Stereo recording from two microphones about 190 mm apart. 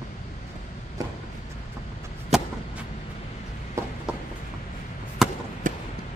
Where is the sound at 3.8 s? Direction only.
15° right (ahead or behind).